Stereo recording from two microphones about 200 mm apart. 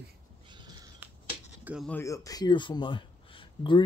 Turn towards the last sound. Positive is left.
turn(degrees=25)  # may be behind; listen again after turning